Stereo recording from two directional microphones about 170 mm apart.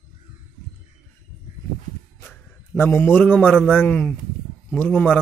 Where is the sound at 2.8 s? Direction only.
15° left (ahead or behind).